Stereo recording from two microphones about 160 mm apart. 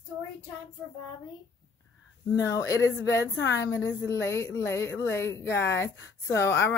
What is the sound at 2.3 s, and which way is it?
A woman's voice, 20° left (ahead or behind).